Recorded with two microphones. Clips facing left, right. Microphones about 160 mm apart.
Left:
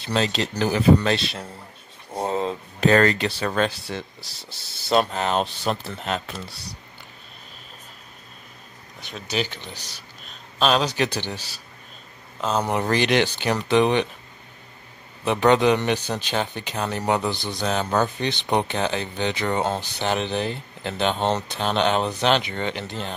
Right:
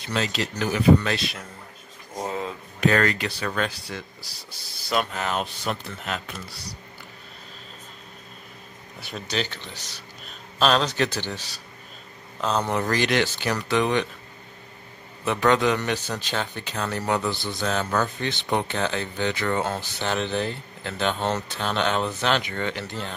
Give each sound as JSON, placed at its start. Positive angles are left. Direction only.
{"t": 0.0, "sound": "a man's voice", "side_deg": 30}
{"t": 4.8, "sound": "a man's voice", "side_deg": 30}
{"t": 9.3, "sound": "speech", "side_deg": 10}
{"t": 12.4, "sound": "speech", "side_deg": 5}
{"t": 12.6, "sound": "a man's voice", "side_deg": 20}
{"t": 15.2, "sound": "a man's voice", "side_deg": 20}